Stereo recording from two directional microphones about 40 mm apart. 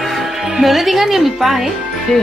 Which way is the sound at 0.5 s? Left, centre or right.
Centre.